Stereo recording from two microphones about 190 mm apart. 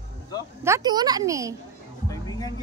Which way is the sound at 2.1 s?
20° left (ahead or behind).